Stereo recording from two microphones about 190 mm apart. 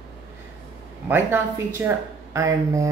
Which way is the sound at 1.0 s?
10° right (ahead or behind).